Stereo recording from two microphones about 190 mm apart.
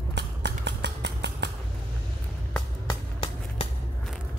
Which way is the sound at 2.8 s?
30° left (ahead or behind).